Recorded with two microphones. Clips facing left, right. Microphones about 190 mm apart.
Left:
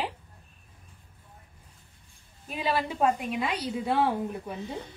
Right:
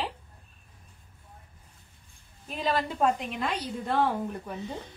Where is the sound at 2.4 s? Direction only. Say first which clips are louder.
Even; 10° left (ahead or behind).